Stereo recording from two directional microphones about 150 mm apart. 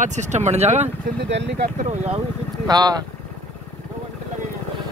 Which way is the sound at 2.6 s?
25° right (ahead or behind).